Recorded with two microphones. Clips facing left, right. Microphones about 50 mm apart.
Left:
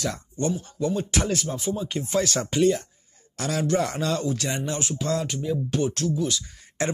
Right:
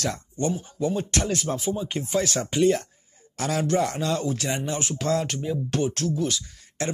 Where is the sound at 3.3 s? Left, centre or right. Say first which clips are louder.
Right 1 dB; right.